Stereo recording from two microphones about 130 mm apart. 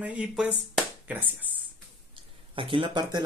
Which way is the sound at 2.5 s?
40° right (ahead or behind).